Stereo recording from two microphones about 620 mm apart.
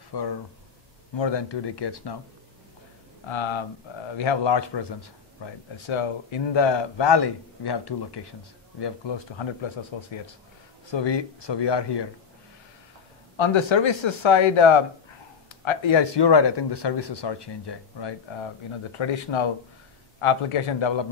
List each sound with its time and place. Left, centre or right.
0.1 s speech: left
3.3 s a man's voice: left
13.4 s a man's voice: left